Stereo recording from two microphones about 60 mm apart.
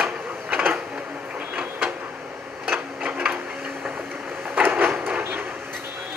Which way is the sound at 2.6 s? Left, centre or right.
Right.